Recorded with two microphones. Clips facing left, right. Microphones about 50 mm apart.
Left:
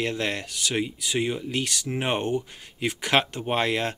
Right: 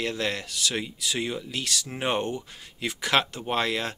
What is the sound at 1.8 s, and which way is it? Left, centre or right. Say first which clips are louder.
Speech: left 1 dB; centre.